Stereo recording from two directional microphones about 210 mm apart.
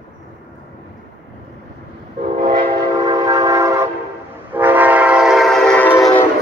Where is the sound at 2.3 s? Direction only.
25° right (ahead or behind); by 6.1 s 5° left (ahead or behind).